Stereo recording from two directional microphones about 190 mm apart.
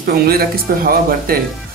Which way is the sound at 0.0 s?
55° right (ahead or behind).